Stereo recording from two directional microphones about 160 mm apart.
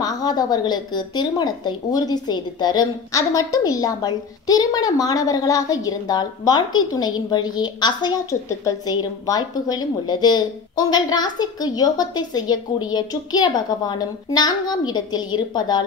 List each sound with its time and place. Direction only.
0.0 s a woman's voice: 25° left (ahead or behind)